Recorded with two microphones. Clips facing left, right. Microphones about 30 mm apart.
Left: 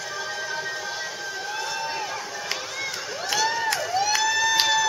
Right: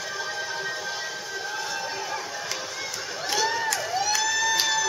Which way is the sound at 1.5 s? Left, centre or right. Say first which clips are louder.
Left 3 dB; centre.